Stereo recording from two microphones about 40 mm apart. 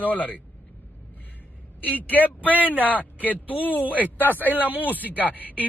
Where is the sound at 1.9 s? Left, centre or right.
Left.